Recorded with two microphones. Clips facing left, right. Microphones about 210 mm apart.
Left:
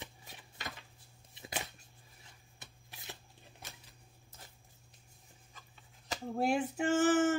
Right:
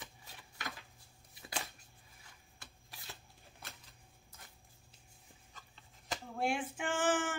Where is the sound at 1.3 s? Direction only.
20° left (ahead or behind).